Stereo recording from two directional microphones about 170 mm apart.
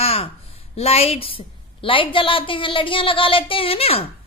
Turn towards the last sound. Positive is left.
turn(degrees=35)  # may be behind; listen again after turning